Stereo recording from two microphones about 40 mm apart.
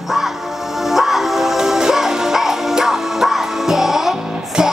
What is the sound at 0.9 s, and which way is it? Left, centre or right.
Music, centre.